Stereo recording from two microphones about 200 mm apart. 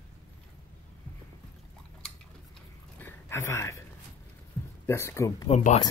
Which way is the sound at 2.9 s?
10° left (ahead or behind).